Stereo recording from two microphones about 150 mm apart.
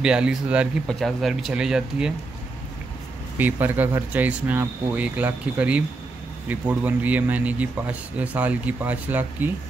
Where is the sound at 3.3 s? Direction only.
10° right (ahead or behind).